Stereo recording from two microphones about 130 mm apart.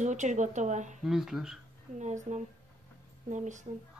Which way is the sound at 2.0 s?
65° right (ahead or behind).